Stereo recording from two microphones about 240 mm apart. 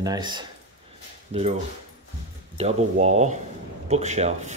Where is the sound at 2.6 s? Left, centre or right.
Right.